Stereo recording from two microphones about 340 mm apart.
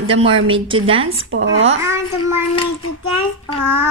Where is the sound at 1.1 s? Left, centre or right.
Right.